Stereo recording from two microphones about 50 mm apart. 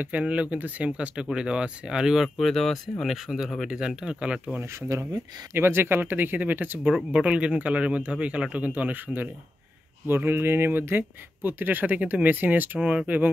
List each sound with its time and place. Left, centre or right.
0.0 s a man's voice: right
2.2 s a man's voice: centre; by 4.6 s right
4.9 s speech: right
5.6 s speech: right
7.1 s a man's voice: right
10.0 s speech: right